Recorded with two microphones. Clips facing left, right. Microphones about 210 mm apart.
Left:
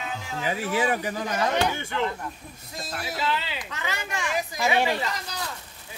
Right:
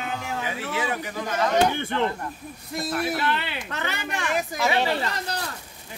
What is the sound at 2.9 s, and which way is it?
Speech, 55° right (ahead or behind).